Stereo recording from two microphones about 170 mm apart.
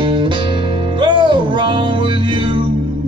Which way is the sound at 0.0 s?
30° right (ahead or behind).